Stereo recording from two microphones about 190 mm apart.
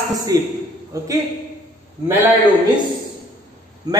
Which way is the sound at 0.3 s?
20° right (ahead or behind).